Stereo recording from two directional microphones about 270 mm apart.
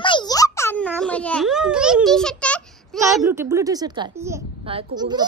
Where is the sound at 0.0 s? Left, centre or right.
Centre.